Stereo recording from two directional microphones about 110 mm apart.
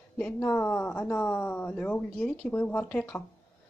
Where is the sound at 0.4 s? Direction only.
20° left (ahead or behind).